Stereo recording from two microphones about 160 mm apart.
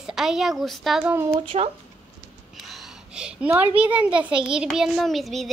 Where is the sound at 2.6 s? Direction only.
Centre (ahead or behind).